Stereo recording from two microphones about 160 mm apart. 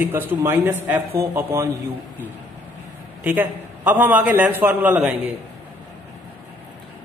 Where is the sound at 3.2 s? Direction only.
10° right (ahead or behind).